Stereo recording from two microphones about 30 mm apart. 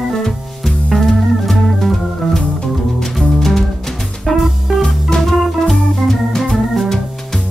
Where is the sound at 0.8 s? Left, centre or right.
Centre.